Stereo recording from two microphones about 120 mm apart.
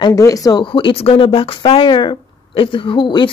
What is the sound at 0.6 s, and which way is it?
Speech, 45° left (ahead or behind).